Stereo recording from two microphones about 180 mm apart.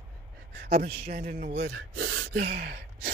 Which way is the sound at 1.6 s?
90° right.